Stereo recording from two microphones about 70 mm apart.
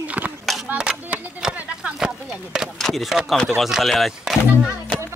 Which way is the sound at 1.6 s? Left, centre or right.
Centre.